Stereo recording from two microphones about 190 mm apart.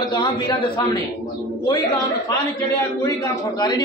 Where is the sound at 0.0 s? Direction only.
20° left (ahead or behind).